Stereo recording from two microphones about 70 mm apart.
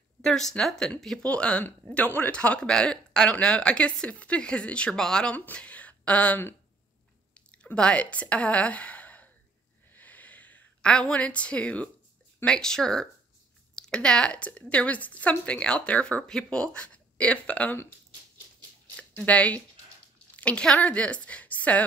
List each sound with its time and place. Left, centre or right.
0.2 s speech: centre
5.3 s a woman's voice: left
9.9 s a sound: left
12.4 s speech: centre
18.9 s a woman's voice: centre